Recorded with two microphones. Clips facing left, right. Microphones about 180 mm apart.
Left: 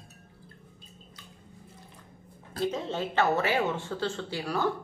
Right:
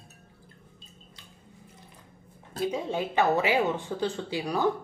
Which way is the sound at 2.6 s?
10° right (ahead or behind).